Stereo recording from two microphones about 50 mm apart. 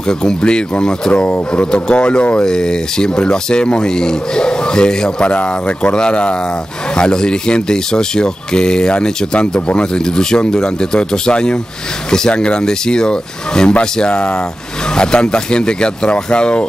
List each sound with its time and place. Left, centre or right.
0.2 s speech: centre